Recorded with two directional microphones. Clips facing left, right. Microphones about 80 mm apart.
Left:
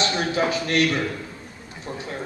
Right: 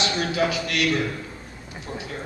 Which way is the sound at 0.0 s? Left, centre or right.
Left.